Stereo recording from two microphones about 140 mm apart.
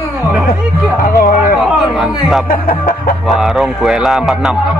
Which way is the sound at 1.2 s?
90° left.